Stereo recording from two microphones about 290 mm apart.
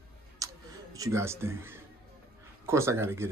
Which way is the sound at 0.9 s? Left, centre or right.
Centre.